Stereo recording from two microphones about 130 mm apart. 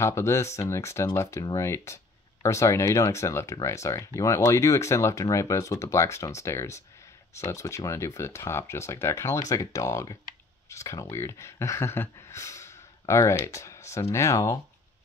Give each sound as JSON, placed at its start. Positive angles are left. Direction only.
{"t": 0.0, "sound": "speech", "side_deg": 20}